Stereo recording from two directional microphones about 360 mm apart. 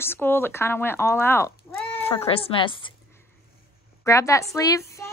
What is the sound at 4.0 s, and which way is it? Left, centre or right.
A woman's voice, centre.